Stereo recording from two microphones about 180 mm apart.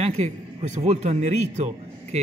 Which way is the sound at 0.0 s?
35° right (ahead or behind).